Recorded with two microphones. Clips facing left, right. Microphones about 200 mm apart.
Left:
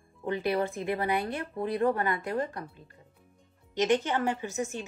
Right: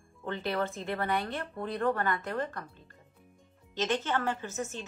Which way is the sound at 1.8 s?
15° left (ahead or behind).